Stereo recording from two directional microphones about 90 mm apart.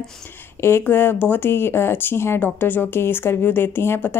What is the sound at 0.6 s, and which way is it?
Speech, 30° left (ahead or behind).